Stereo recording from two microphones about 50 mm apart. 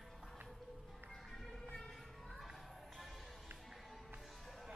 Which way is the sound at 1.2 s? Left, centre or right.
Centre.